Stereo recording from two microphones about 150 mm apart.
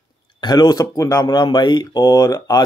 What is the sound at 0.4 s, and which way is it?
Speech, 25° left (ahead or behind).